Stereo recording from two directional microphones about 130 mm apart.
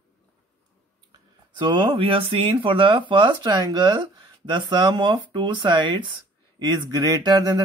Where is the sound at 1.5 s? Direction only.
40° right (ahead or behind).